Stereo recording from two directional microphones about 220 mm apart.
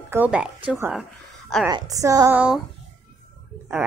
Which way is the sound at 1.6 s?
15° right (ahead or behind).